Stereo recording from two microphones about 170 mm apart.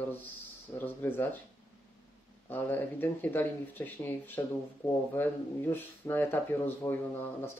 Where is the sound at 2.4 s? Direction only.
10° left (ahead or behind).